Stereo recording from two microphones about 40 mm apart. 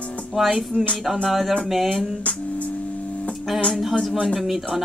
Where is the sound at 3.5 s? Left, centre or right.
Centre.